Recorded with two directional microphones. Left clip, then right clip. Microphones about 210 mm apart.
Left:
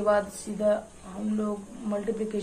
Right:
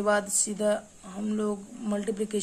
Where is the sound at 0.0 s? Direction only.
40° right (ahead or behind).